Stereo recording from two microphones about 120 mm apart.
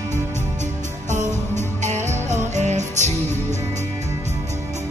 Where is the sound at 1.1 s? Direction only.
85° right.